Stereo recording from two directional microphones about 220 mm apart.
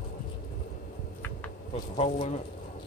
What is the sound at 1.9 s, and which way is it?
Speech, 30° left (ahead or behind).